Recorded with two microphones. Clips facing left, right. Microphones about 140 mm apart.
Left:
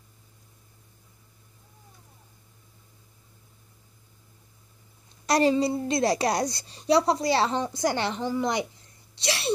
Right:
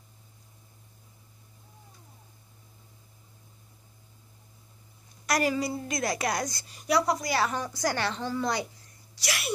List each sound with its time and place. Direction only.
5.2 s a woman's voice: 30° left (ahead or behind)